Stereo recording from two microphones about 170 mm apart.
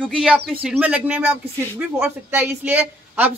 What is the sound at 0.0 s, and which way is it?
Speech, 5° right (ahead or behind).